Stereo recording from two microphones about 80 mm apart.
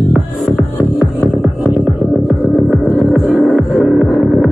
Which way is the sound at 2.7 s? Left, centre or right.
Centre.